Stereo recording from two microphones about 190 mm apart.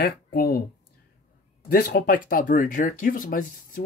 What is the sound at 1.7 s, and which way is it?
Speech, 50° left (ahead or behind).